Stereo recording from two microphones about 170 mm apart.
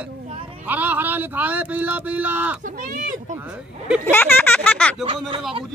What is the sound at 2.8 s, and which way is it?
Speech, 55° right (ahead or behind).